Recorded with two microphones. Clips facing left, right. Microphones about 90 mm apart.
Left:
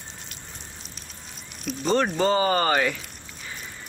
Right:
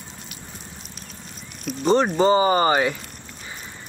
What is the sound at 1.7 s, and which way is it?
Speech, centre (ahead or behind).